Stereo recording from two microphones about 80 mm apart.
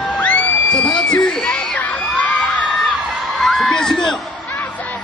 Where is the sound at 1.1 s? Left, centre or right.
Centre.